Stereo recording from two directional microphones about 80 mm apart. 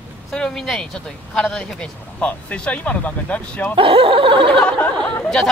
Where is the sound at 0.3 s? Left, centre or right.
Centre.